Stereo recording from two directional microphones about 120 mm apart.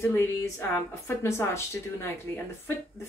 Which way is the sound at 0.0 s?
20° left (ahead or behind).